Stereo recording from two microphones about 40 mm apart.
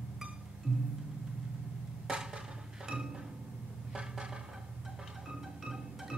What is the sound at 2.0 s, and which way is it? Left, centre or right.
Wood block, right.